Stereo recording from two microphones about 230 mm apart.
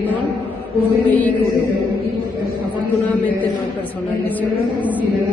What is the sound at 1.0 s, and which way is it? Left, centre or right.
Speech, centre.